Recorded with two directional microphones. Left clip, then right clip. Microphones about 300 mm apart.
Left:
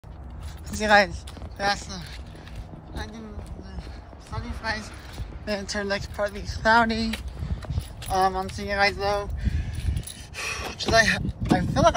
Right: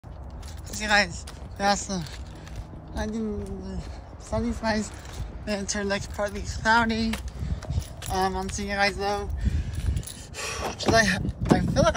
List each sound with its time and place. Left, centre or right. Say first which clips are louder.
0.7 s speech: left 4 dB; centre
1.6 s speech: right 2 dB; centre
4.3 s speech: right 4 dB; centre
8.0 s a sound: left 4 dB; centre